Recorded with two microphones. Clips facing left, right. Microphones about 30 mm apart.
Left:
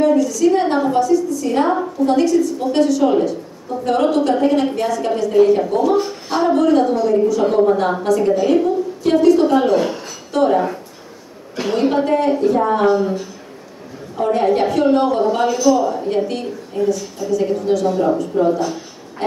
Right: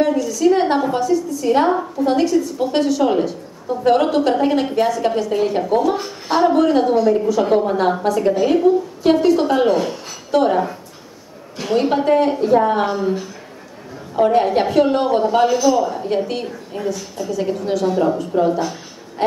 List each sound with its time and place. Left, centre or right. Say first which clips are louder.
0.0 s a sound: left 2 dB; centre
0.7 s speech: left 2 dB; centre
9.8 s speech: left 2 dB; centre
10.3 s speech: even; centre
11.7 s speech: right 1 dB; centre
14.1 s speech: right 1 dB; centre
18.5 s speech: left 2 dB; centre